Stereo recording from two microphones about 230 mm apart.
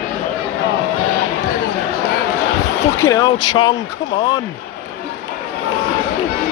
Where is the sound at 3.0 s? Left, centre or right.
Centre.